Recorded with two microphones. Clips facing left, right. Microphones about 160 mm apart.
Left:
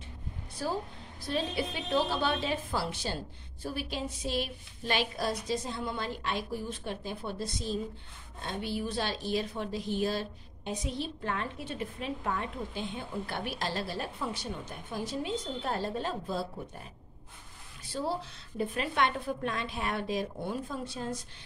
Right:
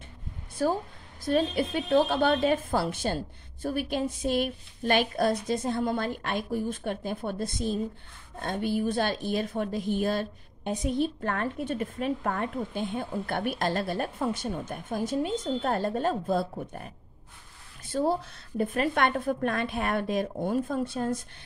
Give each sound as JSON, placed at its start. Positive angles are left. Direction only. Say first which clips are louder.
{"t": 0.6, "sound": "a woman's voice", "louder": "right 7 dB", "side_deg": -55}